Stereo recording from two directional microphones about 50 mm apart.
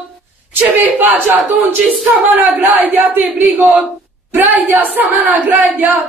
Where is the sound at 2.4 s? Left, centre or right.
Right.